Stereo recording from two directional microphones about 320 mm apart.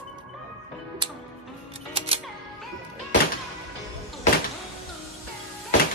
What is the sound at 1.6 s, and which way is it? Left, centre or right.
Music, centre.